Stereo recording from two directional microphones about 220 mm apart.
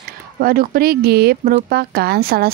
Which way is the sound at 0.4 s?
40° right (ahead or behind).